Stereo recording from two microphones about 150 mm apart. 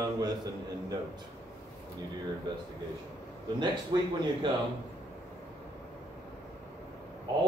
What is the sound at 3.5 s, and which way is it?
Speech, 30° right (ahead or behind).